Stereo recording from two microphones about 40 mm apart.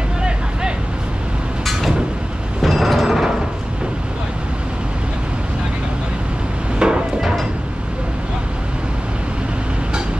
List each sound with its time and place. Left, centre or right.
1.7 s vehicle: centre
6.8 s hammer: centre
7.2 s a sound: centre